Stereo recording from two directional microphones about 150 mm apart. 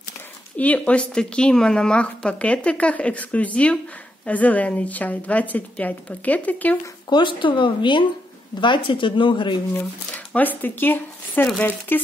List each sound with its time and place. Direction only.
0.6 s speech: 10° left (ahead or behind)
7.1 s speech: 30° left (ahead or behind)
9.8 s speech: 10° left (ahead or behind)